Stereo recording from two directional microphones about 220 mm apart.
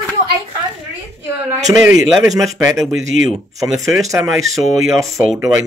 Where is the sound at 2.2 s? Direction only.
15° right (ahead or behind).